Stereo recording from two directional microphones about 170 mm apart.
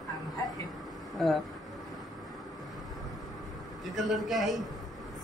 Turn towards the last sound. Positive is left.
turn(degrees=0)  # may be behind; listen again after turning